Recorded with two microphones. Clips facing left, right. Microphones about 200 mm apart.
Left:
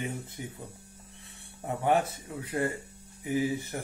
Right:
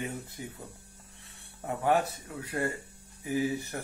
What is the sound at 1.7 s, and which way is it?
Speech, 20° left (ahead or behind).